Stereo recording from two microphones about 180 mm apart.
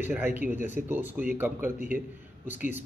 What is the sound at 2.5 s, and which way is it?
Speech, 45° left (ahead or behind).